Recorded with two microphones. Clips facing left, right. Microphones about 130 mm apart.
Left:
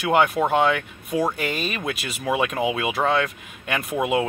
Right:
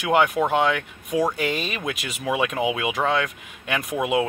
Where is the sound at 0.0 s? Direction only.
15° right (ahead or behind).